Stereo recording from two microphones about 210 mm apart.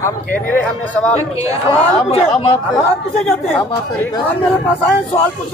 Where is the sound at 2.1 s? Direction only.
30° left (ahead or behind).